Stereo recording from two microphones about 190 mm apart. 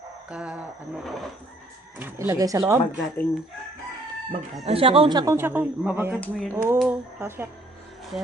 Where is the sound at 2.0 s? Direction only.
15° right (ahead or behind).